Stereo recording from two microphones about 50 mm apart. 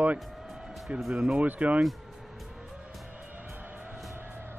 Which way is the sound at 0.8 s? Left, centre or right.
Centre.